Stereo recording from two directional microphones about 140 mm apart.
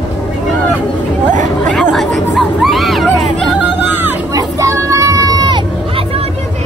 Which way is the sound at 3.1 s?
5° left (ahead or behind).